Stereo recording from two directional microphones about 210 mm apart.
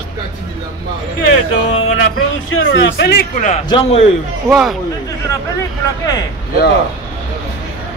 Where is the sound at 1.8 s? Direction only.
70° left (ahead or behind); by 3.6 s 35° left (ahead or behind).